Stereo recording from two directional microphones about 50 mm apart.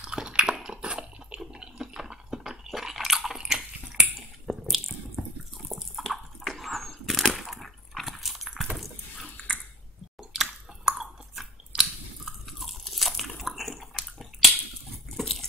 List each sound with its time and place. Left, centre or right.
0.0 s dog: centre
0.7 s a sound: right
1.5 s chewing: centre
3.3 s biting: centre
4.5 s drip: centre
5.6 s bathtub: centre
5.9 s water: centre
10.3 s chewing: centre
12.3 s biting: centre
15.1 s pig: centre